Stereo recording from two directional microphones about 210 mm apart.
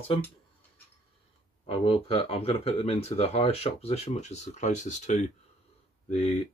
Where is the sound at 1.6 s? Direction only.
25° left (ahead or behind).